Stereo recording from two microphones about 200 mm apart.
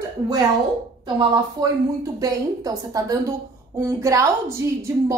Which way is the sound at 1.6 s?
20° right (ahead or behind).